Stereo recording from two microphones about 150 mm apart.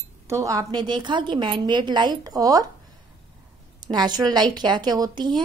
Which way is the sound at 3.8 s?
30° right (ahead or behind).